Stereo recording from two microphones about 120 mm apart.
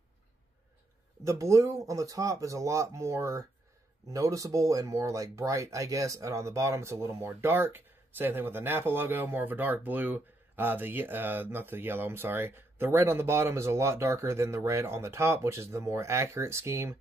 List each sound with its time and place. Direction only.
1.2 s speech: 25° right (ahead or behind)